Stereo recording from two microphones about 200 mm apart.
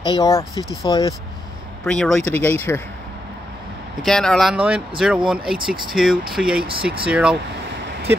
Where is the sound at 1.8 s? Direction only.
5° left (ahead or behind).